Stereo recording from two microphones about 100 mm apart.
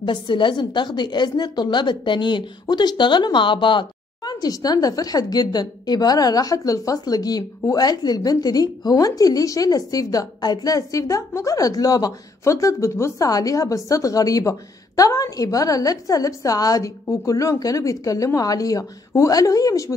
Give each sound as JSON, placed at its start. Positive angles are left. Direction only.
{"t": 0.0, "sound": "a woman's voice", "side_deg": 55}